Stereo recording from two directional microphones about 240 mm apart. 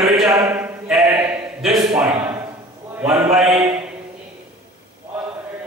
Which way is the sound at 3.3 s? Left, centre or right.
Centre.